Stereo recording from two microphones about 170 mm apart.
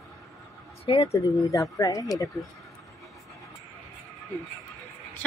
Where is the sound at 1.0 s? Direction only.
20° left (ahead or behind).